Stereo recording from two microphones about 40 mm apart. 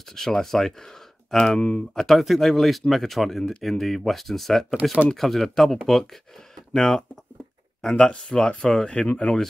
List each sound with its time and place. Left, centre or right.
0.1 s speech: centre
2.0 s speech: centre
7.9 s speech: left
8.9 s speech: left